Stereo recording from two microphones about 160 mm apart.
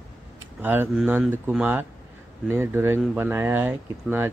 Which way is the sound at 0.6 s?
10° right (ahead or behind).